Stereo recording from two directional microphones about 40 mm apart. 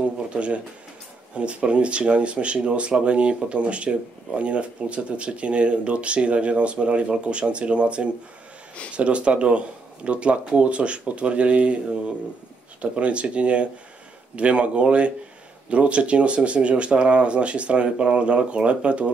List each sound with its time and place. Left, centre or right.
0.3 s speech: right
12.8 s speech: right